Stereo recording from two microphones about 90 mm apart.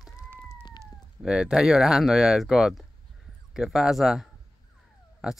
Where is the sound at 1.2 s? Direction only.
5° right (ahead or behind).